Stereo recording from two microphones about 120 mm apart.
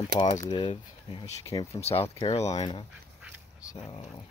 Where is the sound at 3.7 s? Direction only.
50° left (ahead or behind).